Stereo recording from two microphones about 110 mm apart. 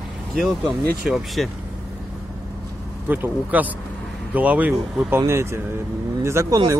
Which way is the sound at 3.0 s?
15° right (ahead or behind).